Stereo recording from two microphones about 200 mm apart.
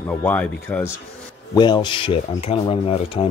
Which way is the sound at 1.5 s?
20° left (ahead or behind).